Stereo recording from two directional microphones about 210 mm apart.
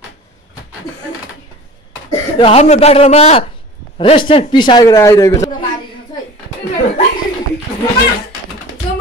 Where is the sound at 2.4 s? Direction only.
30° left (ahead or behind); by 5.5 s 15° left (ahead or behind).